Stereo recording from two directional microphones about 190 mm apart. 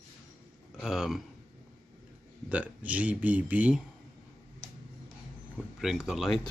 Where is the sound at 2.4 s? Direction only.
10° right (ahead or behind).